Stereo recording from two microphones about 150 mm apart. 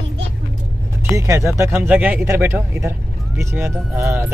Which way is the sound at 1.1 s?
20° right (ahead or behind).